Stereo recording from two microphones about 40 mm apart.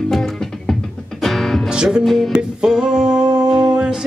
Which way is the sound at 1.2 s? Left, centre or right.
Centre.